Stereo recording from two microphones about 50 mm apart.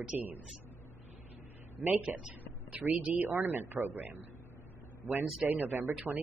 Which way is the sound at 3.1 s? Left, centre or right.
Right.